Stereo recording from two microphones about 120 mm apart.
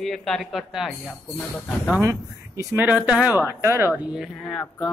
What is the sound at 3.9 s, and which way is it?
Speech, 5° right (ahead or behind).